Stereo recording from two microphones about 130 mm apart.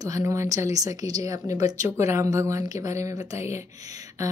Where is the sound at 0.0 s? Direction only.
25° right (ahead or behind).